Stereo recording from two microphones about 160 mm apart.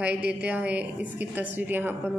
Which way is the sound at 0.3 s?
10° right (ahead or behind).